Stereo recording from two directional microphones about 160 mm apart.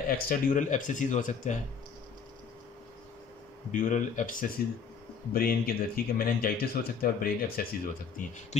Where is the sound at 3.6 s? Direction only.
55° left (ahead or behind).